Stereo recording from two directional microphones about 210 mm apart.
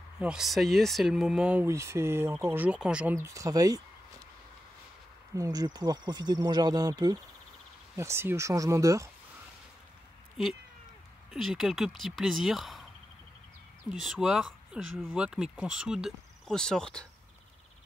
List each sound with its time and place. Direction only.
0.2 s speech: 5° right (ahead or behind)
5.3 s speech: 15° right (ahead or behind)
11.3 s speech: centre (ahead or behind)
13.8 s speech: centre (ahead or behind)